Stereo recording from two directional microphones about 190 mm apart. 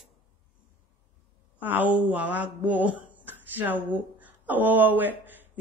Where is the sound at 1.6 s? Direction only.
10° right (ahead or behind).